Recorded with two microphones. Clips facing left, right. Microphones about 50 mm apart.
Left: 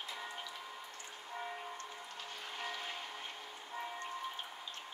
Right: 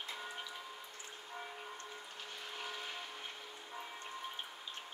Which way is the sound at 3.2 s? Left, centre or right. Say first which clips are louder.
Left 1 dB; centre.